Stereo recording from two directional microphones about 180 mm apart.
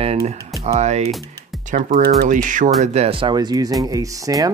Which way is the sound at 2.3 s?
45° right (ahead or behind).